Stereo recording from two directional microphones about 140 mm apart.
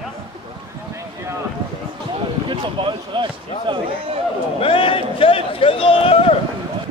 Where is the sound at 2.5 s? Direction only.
35° right (ahead or behind).